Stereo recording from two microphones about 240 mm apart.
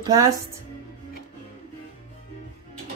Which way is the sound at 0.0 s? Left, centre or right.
Centre.